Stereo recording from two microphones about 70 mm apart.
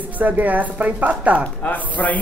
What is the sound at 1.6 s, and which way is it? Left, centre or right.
Speech, left.